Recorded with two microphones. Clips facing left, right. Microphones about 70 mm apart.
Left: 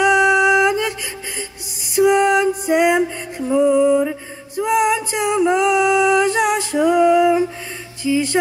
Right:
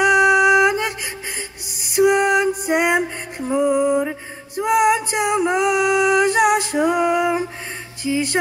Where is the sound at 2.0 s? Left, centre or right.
Centre.